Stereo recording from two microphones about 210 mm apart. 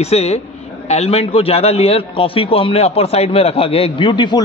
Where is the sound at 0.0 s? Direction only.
30° left (ahead or behind).